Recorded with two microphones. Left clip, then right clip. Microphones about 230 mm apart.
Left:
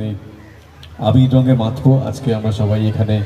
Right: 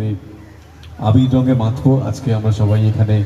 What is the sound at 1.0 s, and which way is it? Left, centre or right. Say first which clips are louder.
A man's voice: left 1 dB; left.